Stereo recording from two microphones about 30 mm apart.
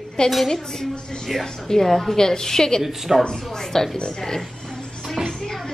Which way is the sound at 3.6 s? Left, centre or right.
Centre.